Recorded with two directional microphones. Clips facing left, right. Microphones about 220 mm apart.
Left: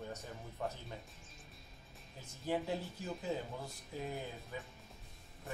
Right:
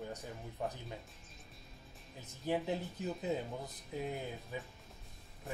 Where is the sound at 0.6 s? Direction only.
20° right (ahead or behind).